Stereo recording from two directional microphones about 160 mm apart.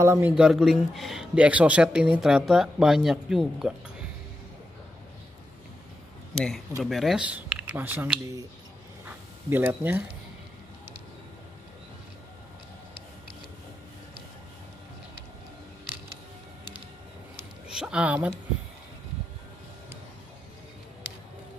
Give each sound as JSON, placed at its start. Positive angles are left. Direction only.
{"t": 0.0, "sound": "speech", "side_deg": -15}
{"t": 0.3, "sound": "speech", "side_deg": -5}
{"t": 6.3, "sound": "speech", "side_deg": 5}
{"t": 9.0, "sound": "a sound", "side_deg": -10}
{"t": 17.6, "sound": "speech", "side_deg": -5}